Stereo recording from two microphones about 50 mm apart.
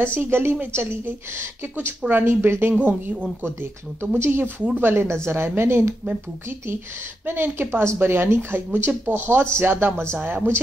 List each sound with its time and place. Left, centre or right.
0.0 s speech: right
2.0 s speech: right
2.8 s speech: right
4.2 s speech: right
7.2 s speech: right
7.7 s speech: right
8.0 s speech: right
10.2 s speech: right